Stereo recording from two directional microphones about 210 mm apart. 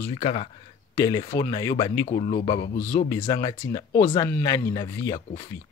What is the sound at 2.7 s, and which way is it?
Speech, 45° left (ahead or behind).